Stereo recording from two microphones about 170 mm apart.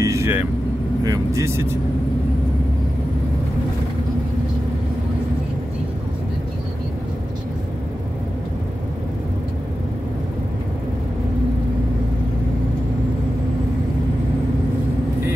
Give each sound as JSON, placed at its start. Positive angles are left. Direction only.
{"t": 0.0, "sound": "vehicle", "side_deg": -15}
{"t": 1.0, "sound": "speech", "side_deg": -20}